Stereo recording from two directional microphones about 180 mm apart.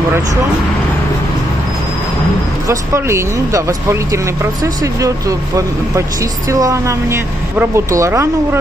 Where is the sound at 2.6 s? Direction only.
15° right (ahead or behind).